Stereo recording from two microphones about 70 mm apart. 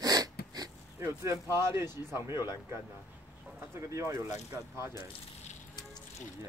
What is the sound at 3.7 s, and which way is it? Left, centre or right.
Speech, right.